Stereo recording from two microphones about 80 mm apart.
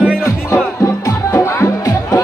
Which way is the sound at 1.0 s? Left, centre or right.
Left.